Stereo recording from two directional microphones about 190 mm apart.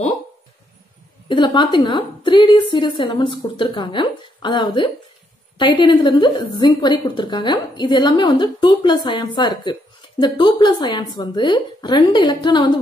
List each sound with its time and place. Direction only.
1.3 s a woman's voice: 25° left (ahead or behind)